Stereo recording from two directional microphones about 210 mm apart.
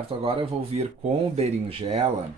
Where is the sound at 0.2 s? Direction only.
25° right (ahead or behind).